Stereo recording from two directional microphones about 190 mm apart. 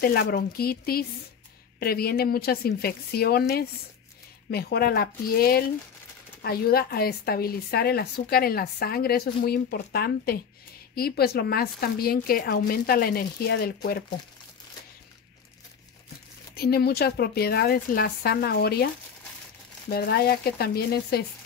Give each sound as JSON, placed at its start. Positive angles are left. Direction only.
{"t": 0.0, "sound": "a woman's voice", "side_deg": 55}
{"t": 16.5, "sound": "a woman's voice", "side_deg": 55}
{"t": 19.9, "sound": "a woman's voice", "side_deg": 55}